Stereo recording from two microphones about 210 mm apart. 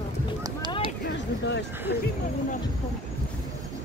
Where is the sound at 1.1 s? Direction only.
55° left (ahead or behind).